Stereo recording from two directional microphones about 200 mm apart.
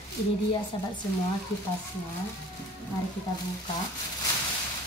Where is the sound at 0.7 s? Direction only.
25° left (ahead or behind).